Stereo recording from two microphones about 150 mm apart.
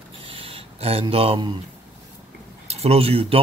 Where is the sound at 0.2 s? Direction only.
40° right (ahead or behind).